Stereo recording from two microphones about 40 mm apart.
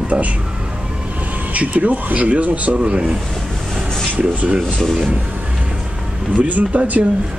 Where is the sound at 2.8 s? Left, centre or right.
Right.